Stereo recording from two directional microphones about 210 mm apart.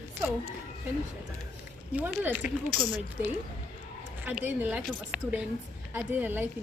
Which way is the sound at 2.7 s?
5° left (ahead or behind).